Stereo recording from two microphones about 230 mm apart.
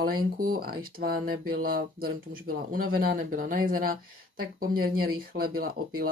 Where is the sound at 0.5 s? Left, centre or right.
Right.